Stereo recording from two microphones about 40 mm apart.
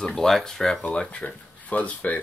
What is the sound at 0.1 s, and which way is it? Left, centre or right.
Speech, centre.